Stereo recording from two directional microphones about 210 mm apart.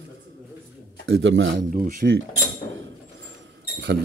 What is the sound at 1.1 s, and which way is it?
Speech, 65° right (ahead or behind).